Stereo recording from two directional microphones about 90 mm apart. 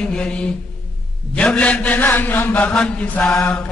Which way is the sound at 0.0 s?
10° left (ahead or behind).